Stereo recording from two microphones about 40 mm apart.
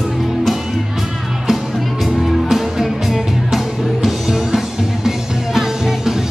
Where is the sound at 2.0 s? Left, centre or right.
Centre.